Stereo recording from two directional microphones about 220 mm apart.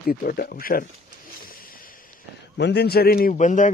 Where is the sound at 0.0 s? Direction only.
40° left (ahead or behind).